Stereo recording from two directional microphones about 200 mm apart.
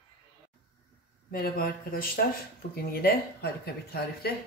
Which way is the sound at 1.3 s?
45° left (ahead or behind).